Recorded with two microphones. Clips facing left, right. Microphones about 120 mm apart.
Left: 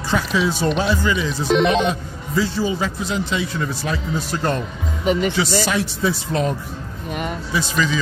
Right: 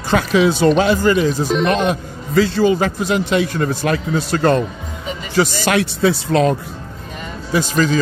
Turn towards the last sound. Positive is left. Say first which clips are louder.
# right 5 dB
turn(degrees=-45)  # may be behind; listen again after turning